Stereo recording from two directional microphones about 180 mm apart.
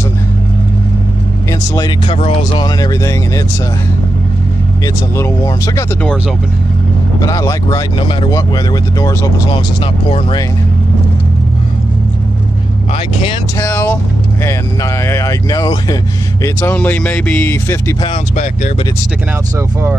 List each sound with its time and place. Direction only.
2.0 s speech: 30° left (ahead or behind)
4.8 s speech: 15° left (ahead or behind)
7.2 s speech: 20° left (ahead or behind)
13.6 s speech: 10° left (ahead or behind)
18.3 s speech: 40° left (ahead or behind)